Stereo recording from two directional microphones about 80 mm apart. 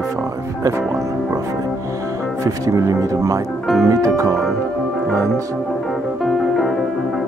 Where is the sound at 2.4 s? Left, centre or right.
Right.